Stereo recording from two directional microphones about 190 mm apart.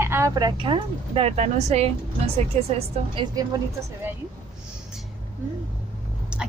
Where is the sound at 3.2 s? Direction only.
20° right (ahead or behind).